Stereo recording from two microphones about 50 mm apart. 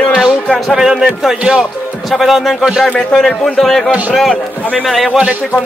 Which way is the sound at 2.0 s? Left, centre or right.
Centre.